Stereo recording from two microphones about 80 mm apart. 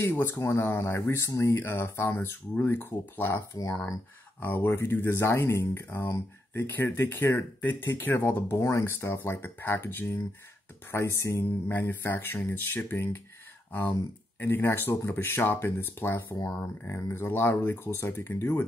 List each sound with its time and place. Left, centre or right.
0.0 s speech: left
14.4 s speech: left